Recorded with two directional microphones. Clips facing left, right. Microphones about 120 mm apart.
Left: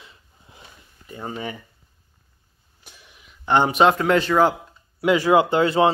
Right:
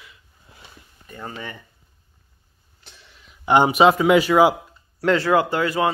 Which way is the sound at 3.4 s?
10° right (ahead or behind).